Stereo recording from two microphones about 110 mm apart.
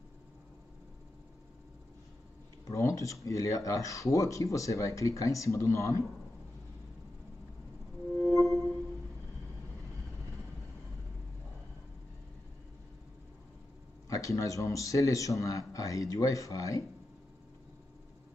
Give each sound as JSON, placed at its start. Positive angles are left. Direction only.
{"t": 2.7, "sound": "speech", "side_deg": 30}
{"t": 8.2, "sound": "music", "side_deg": 0}
{"t": 14.0, "sound": "speech", "side_deg": 30}